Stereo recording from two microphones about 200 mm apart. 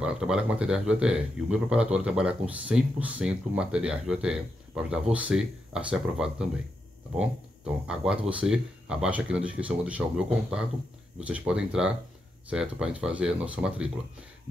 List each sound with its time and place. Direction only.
0.0 s speech: 5° right (ahead or behind)